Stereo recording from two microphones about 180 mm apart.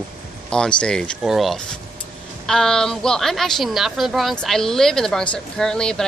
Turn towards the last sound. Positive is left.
turn(degrees=5)  # may be behind; listen again after turning